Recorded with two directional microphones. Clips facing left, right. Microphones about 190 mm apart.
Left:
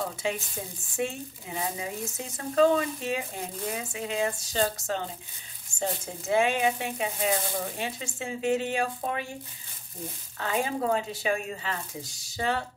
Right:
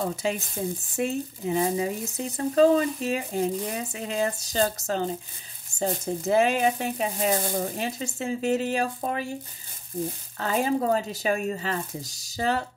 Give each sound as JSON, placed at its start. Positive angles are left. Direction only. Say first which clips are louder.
{"t": 0.0, "sound": "speech", "louder": "right 3 dB", "side_deg": -40}
{"t": 10.4, "sound": "speech", "louder": "right 4 dB", "side_deg": -40}